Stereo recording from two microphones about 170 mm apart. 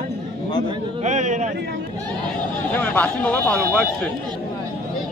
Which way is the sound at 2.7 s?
10° left (ahead or behind).